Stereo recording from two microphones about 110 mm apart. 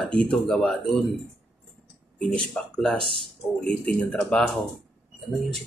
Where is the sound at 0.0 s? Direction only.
10° left (ahead or behind).